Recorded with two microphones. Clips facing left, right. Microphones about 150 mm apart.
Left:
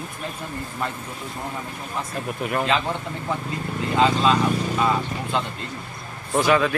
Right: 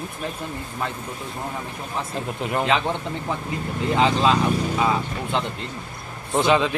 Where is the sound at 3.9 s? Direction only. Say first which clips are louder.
Even; 20° right (ahead or behind).